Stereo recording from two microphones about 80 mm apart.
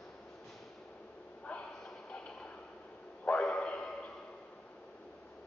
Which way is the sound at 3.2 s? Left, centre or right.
Centre.